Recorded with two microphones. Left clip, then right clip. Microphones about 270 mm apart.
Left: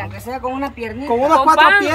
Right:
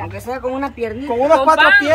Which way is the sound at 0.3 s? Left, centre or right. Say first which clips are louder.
Right 2 dB; centre.